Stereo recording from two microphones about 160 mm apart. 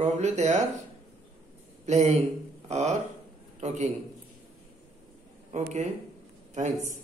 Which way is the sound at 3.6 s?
45° right (ahead or behind).